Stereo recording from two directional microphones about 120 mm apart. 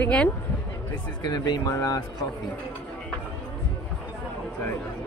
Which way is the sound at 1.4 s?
30° left (ahead or behind).